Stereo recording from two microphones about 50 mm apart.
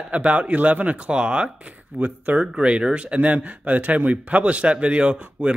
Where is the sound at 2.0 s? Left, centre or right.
Right.